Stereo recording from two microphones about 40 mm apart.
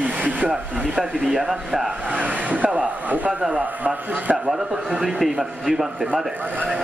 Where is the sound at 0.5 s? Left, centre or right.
Right.